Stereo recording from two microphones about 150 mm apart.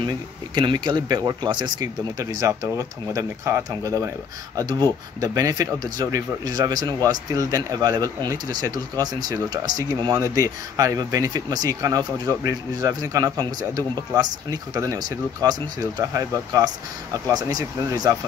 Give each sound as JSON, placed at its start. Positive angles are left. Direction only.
{"t": 0.6, "sound": "speech", "side_deg": -30}